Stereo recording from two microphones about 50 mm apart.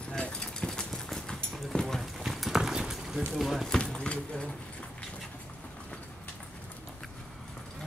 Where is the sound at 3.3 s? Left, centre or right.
Centre.